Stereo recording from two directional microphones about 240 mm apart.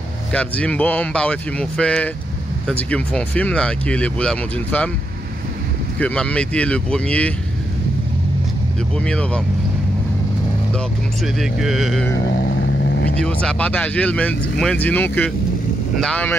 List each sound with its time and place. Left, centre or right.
0.3 s speech: centre
5.9 s speech: centre
8.9 s speech: centre
11.3 s speech: centre
12.1 s vehicle: left
13.1 s speech: centre